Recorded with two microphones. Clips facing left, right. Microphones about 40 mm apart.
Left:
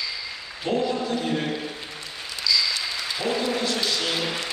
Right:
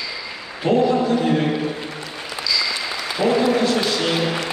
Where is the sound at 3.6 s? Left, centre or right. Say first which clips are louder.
Right 6 dB; centre.